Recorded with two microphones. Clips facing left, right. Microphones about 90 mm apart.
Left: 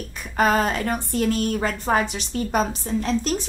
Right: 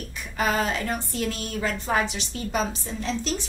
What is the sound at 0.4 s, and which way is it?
A woman's voice, 45° left (ahead or behind).